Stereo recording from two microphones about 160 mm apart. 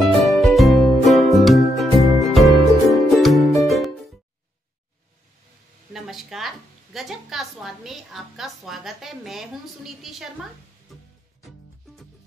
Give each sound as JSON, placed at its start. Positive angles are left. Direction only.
{"t": 0.0, "sound": "music", "side_deg": 0}
{"t": 5.9, "sound": "a woman's voice", "side_deg": 0}
{"t": 11.4, "sound": "music", "side_deg": 0}